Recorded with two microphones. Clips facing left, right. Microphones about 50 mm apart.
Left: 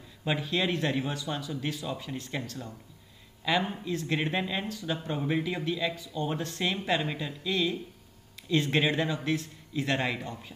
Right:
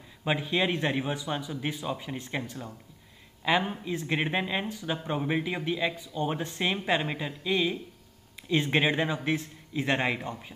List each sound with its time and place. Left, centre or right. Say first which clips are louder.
0.2 s speech: right 2 dB; centre